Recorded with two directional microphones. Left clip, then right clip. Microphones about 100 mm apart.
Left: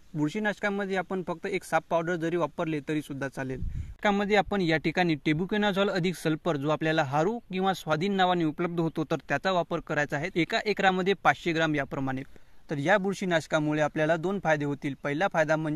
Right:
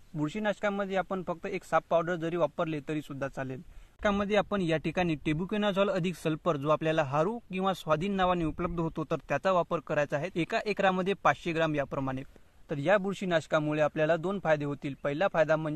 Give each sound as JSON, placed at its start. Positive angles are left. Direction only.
{"t": 0.2, "sound": "speech", "side_deg": 15}
{"t": 8.5, "sound": "speech", "side_deg": 20}
{"t": 9.3, "sound": "speech", "side_deg": 0}
{"t": 12.6, "sound": "speech", "side_deg": 25}